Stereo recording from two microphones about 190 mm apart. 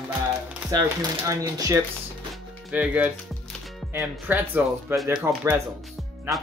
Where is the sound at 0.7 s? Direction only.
15° right (ahead or behind).